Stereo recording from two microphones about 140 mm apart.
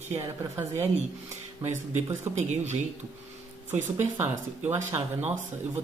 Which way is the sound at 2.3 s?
55° right (ahead or behind).